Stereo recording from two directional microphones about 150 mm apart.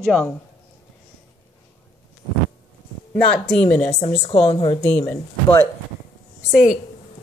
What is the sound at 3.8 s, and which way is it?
Speech, 40° left (ahead or behind).